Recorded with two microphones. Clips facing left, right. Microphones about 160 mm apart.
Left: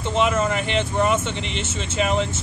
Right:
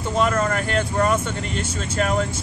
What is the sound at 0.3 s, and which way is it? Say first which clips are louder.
Speech: even; 5° left (ahead or behind).